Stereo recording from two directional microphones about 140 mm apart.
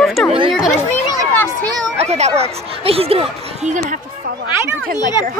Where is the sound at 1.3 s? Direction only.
15° left (ahead or behind).